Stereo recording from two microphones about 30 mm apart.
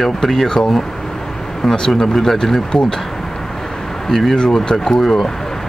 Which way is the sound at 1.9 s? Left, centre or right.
Centre.